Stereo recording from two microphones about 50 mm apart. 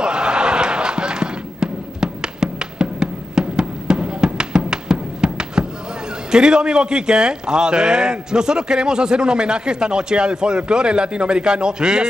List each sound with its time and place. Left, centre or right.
0.0 s a sound: centre
5.2 s music: centre
6.3 s a man's voice: centre